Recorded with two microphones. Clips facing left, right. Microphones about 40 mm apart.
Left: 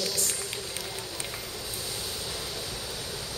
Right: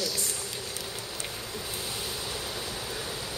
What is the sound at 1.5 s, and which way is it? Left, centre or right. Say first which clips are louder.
Waves: right 1 dB; right.